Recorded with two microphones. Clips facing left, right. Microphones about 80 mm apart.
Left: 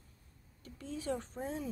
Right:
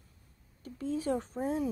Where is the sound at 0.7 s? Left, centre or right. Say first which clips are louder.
Right 6 dB; right.